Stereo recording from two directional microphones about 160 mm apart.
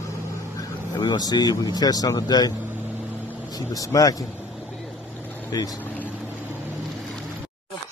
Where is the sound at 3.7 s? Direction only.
20° left (ahead or behind).